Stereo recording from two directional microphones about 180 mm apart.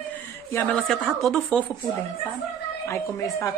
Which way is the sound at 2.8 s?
15° left (ahead or behind).